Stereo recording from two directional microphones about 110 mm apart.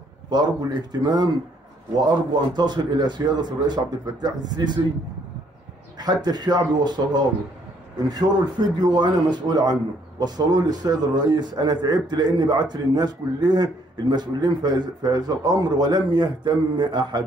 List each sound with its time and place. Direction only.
0.3 s a man's voice: 40° right (ahead or behind)
5.9 s a man's voice: 40° right (ahead or behind)